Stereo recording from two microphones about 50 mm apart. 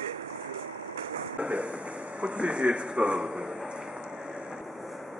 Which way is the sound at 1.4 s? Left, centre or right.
Right.